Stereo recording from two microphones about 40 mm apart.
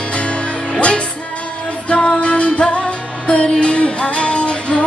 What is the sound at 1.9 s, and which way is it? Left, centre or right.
Music, left.